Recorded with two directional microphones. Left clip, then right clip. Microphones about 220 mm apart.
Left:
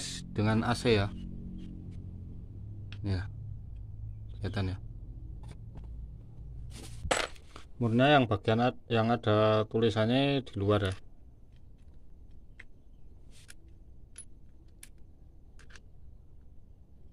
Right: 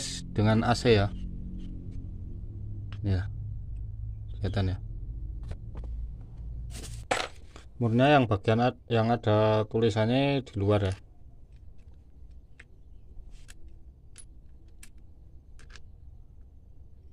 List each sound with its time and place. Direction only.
0.0 s speech: 10° right (ahead or behind)
3.0 s speech: 5° right (ahead or behind)
4.4 s a man's voice: 5° right (ahead or behind)
7.1 s a sound: 20° left (ahead or behind)
7.5 s speech: centre (ahead or behind)